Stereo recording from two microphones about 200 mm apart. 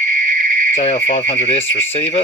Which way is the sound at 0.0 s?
40° right (ahead or behind).